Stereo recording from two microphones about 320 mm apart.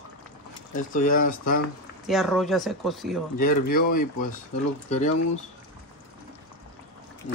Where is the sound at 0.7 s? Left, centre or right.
Left.